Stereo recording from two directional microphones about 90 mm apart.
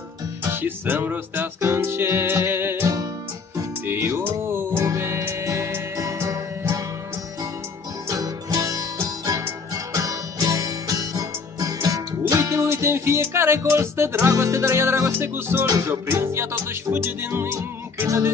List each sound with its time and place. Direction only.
0.5 s music: 25° right (ahead or behind)
8.1 s music: 40° right (ahead or behind)
12.4 s music: 30° right (ahead or behind)